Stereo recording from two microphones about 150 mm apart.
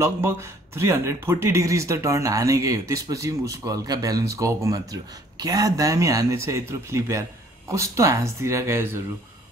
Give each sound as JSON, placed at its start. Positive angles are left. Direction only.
{"t": 0.0, "sound": "speech", "side_deg": -15}